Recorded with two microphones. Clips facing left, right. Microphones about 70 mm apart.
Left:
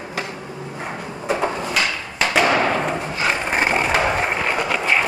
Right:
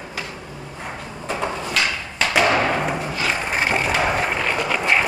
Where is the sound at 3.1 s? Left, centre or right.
Left.